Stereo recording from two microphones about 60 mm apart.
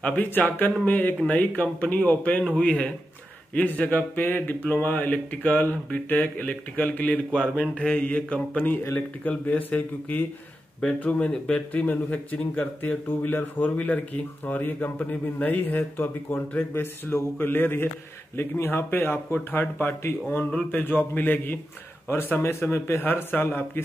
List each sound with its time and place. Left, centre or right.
0.0 s speech: left
11.0 s speech: centre
11.7 s speech: left
22.0 s speech: left